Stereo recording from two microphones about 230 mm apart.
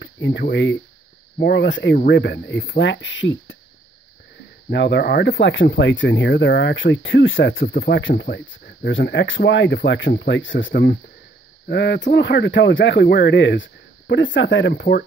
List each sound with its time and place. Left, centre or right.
0.0 s speech: left
4.6 s speech: left